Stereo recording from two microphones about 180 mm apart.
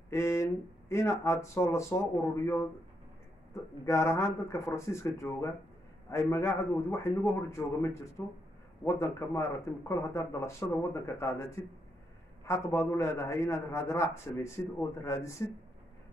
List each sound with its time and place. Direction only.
0.1 s a man's voice: 15° left (ahead or behind)